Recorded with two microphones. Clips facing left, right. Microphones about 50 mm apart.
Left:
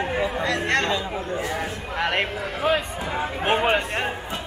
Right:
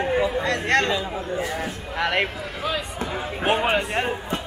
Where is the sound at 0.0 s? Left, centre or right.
Centre.